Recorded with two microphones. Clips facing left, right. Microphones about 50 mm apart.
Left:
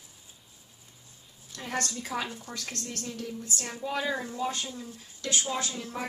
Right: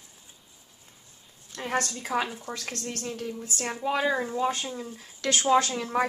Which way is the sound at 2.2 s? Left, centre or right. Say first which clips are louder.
Right 4 dB; centre.